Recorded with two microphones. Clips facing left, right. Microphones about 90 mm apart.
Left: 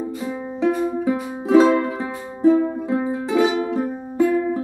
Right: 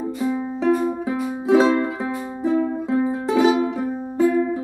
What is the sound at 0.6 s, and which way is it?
Music, centre (ahead or behind).